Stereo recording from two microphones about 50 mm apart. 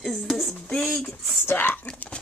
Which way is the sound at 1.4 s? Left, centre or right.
Left.